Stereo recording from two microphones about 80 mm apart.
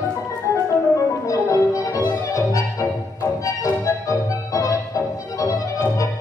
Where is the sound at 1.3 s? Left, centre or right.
Left.